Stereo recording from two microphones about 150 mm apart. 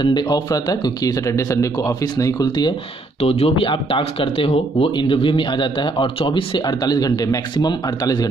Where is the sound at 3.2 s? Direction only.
45° left (ahead or behind).